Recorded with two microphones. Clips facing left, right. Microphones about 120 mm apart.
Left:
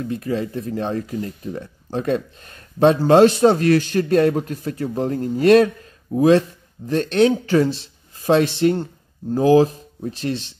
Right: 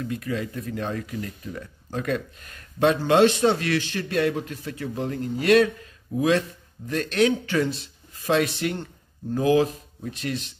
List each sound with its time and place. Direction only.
0.0 s speech: 30° left (ahead or behind)